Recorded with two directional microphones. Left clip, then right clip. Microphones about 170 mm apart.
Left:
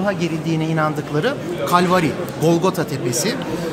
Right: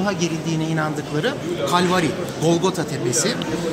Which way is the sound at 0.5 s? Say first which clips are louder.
Left 3 dB; 50° left (ahead or behind).